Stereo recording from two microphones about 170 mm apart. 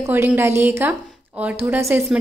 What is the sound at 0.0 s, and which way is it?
A woman's voice, 10° right (ahead or behind).